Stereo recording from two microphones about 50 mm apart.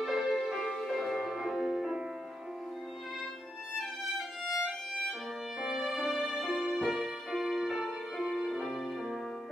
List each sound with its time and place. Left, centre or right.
0.0 s music: centre
5.6 s music: centre